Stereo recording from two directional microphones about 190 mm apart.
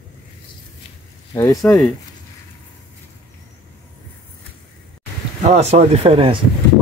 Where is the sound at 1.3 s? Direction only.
20° left (ahead or behind).